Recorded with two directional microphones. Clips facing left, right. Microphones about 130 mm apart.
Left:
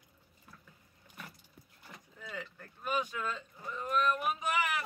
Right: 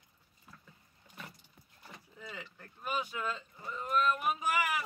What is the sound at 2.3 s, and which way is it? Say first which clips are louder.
Boat: left 5 dB; 5° right (ahead or behind).